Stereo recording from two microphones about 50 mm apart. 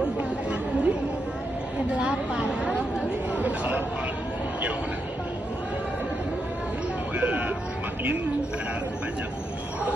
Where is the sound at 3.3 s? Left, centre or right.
Right.